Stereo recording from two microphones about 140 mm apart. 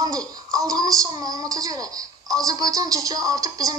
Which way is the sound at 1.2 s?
25° right (ahead or behind).